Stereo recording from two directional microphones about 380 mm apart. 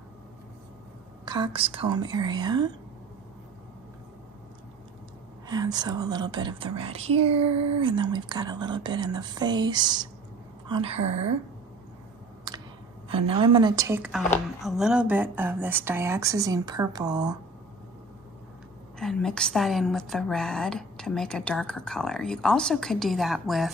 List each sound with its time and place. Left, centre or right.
1.2 s a woman's voice: centre
5.5 s a woman's voice: centre
12.5 s a sound: centre
13.1 s a woman's voice: centre
18.9 s a woman's voice: centre